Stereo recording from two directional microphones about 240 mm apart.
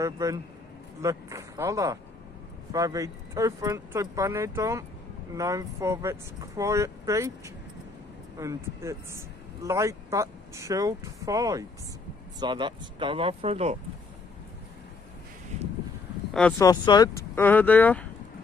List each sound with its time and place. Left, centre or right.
0.0 s speech: centre
16.3 s speech: centre